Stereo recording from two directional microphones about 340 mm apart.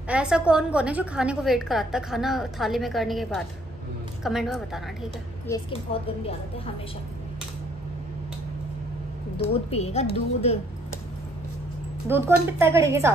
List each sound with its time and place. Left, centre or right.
0.1 s a woman's voice: centre
9.4 s a woman's voice: centre
12.1 s a woman's voice: centre